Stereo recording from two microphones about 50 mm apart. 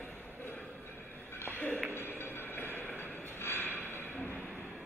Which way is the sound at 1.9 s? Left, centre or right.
Left.